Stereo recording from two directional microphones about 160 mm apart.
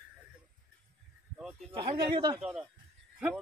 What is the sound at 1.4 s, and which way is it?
Speech, centre (ahead or behind).